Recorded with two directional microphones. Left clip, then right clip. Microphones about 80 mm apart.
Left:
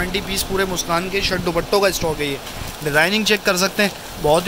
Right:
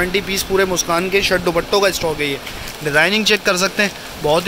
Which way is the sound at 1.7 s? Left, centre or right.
Centre.